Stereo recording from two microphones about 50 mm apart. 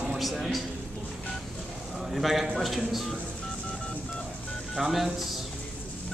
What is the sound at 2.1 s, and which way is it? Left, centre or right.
Speech, centre.